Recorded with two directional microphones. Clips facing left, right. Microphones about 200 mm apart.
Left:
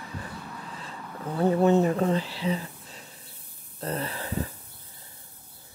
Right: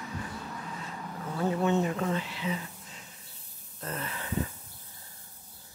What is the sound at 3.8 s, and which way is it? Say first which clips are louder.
Wheeze: left 6 dB; 35° left (ahead or behind).